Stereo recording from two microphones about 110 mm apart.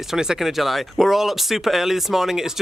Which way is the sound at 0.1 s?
5° right (ahead or behind).